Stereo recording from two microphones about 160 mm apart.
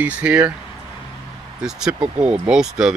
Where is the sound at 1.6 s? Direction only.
5° right (ahead or behind).